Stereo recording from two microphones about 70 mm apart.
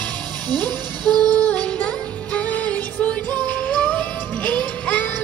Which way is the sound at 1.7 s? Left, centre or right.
Left.